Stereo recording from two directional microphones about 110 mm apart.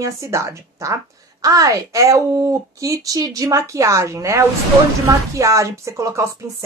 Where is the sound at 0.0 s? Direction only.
25° right (ahead or behind).